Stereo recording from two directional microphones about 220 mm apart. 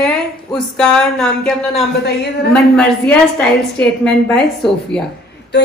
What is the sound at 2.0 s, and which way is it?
Speech, 45° left (ahead or behind).